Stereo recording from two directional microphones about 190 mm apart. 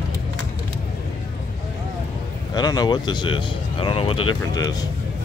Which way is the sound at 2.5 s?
20° left (ahead or behind).